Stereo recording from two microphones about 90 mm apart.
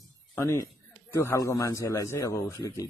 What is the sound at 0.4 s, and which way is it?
A man's voice, 30° left (ahead or behind).